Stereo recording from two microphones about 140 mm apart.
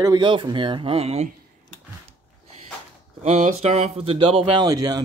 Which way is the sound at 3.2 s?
50° right (ahead or behind).